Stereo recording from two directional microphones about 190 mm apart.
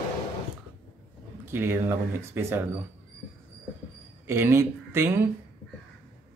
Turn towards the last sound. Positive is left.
turn(degrees=-15)  # may be behind; listen again after turning